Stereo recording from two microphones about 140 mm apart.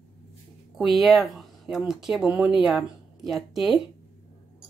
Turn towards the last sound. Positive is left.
turn(degrees=0)  # may be behind; listen again after turning